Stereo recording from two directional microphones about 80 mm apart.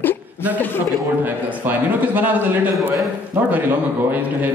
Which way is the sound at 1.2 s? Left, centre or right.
Right.